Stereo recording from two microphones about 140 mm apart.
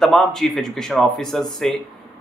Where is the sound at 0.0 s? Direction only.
Centre (ahead or behind).